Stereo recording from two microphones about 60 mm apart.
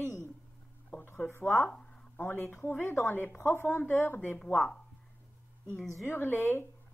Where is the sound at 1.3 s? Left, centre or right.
Left.